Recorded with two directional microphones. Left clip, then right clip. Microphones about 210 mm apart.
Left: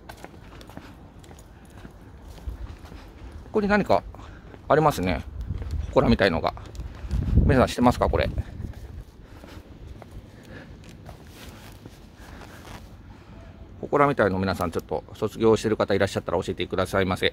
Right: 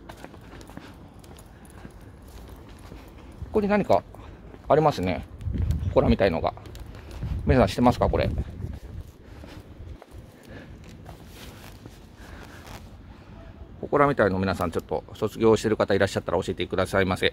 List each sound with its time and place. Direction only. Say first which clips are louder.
3.5 s speech: even; centre (ahead or behind)
13.8 s speech: even; centre (ahead or behind)